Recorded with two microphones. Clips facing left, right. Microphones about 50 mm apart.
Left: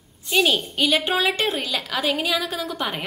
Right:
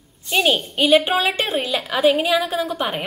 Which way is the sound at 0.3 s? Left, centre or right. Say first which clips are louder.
Right 1 dB; centre.